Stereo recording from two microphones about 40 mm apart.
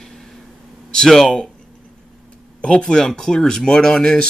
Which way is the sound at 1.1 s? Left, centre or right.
Centre.